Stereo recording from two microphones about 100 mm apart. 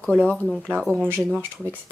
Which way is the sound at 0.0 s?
10° left (ahead or behind).